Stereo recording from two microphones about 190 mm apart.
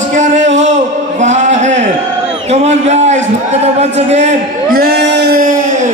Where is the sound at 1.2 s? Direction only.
40° right (ahead or behind).